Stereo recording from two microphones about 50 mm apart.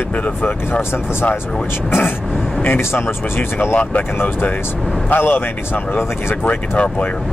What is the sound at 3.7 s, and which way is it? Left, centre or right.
Speech, left.